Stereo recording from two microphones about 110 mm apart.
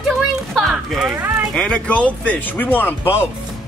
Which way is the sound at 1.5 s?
10° left (ahead or behind).